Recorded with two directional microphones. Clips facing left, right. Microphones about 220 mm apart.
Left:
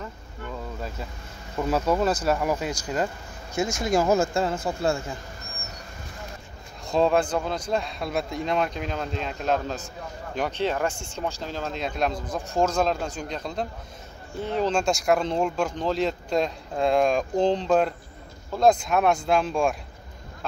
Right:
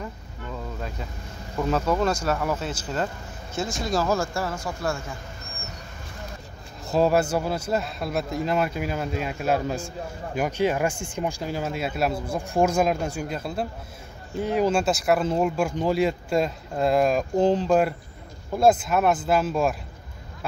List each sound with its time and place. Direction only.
1.7 s speech: 10° left (ahead or behind)
3.8 s speech: 20° left (ahead or behind)
6.9 s speech: 5° right (ahead or behind)